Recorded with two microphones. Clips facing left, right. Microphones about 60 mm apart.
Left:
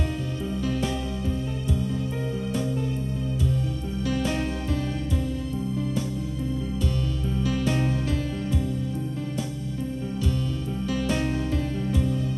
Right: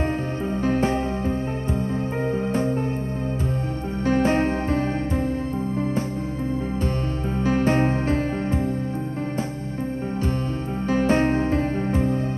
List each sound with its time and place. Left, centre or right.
0.6 s music: right
4.0 s music: right
7.4 s music: right
10.9 s music: right